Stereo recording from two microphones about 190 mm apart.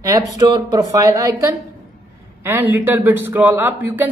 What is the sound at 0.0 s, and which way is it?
A man's voice, 20° right (ahead or behind).